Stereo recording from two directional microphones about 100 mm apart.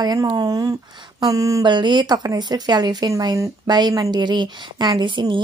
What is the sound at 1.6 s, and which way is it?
A woman's voice, 50° right (ahead or behind).